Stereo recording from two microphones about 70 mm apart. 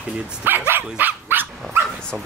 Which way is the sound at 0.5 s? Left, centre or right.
Right.